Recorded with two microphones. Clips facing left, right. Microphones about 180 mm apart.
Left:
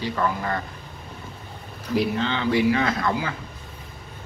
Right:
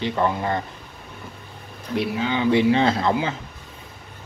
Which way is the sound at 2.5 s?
25° right (ahead or behind).